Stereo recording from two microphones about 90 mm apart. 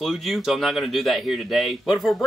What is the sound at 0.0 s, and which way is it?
Speech, centre (ahead or behind).